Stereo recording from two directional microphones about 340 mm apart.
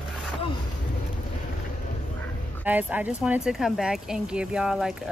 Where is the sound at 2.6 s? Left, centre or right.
Centre.